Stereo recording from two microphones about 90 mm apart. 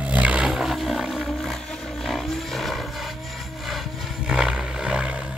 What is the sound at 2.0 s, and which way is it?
Vehicle, centre (ahead or behind).